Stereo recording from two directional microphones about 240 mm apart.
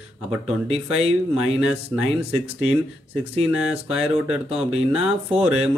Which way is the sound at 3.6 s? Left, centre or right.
Centre.